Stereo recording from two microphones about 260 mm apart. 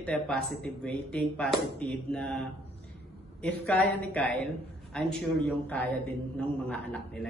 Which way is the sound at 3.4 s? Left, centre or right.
Centre.